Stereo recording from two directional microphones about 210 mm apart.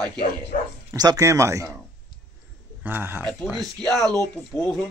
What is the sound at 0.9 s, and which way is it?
Speech, 15° right (ahead or behind).